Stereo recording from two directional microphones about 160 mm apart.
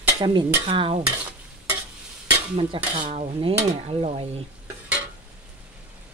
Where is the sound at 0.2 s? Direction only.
30° right (ahead or behind).